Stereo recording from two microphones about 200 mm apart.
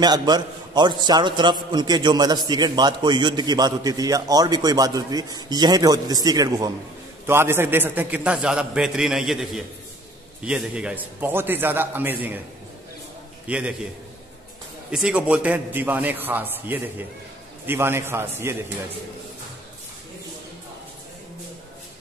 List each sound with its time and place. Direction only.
0.0 s a man's voice: 20° right (ahead or behind)
13.5 s a man's voice: 5° right (ahead or behind)
14.9 s a man's voice: 5° right (ahead or behind)